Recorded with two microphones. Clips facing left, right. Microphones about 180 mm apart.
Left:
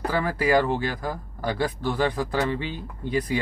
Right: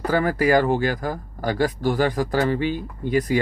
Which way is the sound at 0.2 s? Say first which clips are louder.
Right 2 dB; 45° right (ahead or behind).